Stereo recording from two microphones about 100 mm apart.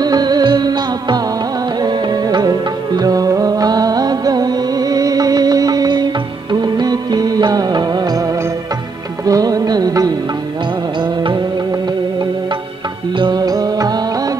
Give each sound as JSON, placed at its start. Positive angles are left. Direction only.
{"t": 0.0, "sound": "music", "side_deg": -40}
{"t": 11.0, "sound": "music", "side_deg": -50}
{"t": 13.1, "sound": "music", "side_deg": -50}